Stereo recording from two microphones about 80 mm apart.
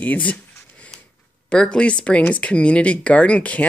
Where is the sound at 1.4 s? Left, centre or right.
Centre.